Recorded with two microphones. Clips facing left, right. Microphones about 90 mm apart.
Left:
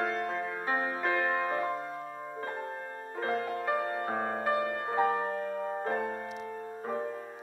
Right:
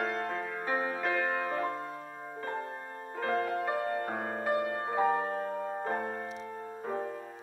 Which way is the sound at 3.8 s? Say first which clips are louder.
Left 1 dB; 35° left (ahead or behind).